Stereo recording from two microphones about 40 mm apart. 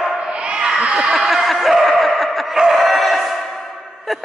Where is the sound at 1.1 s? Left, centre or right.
Centre.